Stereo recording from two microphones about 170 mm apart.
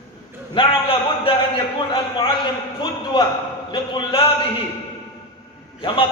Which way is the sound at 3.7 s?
30° left (ahead or behind).